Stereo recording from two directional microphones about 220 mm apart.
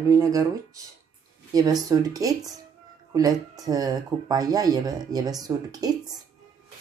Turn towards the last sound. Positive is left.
turn(degrees=-15)  # may be behind; listen again after turning